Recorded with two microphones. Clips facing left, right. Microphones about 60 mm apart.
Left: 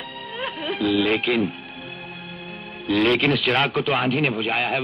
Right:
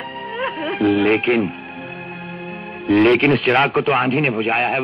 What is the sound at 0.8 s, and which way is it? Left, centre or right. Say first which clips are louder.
Speech: right 5 dB; right.